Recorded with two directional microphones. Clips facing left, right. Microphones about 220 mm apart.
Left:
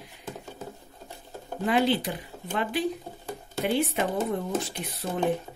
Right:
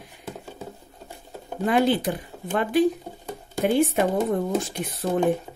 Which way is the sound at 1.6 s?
50° right (ahead or behind).